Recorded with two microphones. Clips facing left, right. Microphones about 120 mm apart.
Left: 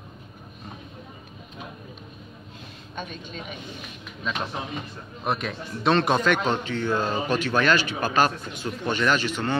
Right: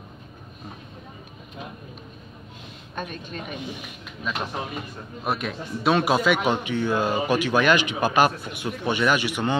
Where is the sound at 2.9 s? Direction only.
50° right (ahead or behind).